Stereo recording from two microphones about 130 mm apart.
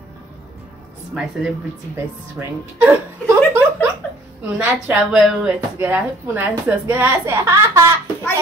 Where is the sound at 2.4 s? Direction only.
15° right (ahead or behind).